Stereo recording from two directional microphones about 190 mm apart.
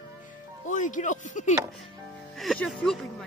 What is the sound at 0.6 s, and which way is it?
Speech, 40° left (ahead or behind).